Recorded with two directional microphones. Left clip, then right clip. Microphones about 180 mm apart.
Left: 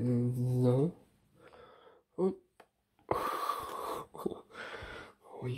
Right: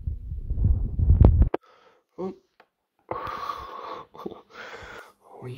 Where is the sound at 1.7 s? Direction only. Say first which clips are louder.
Right 1 dB; 25° left (ahead or behind).